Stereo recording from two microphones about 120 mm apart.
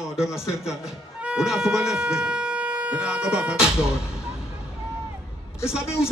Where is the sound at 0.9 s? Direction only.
5° right (ahead or behind).